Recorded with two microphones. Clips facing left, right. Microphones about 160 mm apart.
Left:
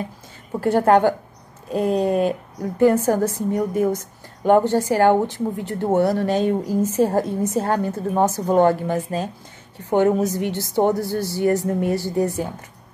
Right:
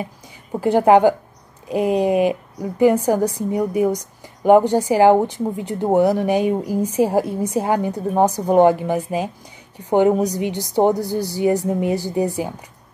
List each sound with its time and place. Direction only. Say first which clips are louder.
0.6 s a woman's voice: right 3 dB; 15° right (ahead or behind)